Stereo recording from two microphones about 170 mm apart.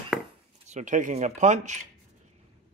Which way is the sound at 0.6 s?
45° right (ahead or behind).